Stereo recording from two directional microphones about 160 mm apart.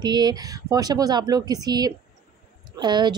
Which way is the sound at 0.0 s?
25° right (ahead or behind).